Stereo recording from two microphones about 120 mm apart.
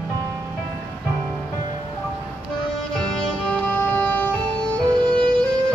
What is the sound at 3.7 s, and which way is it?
Music, 15° left (ahead or behind).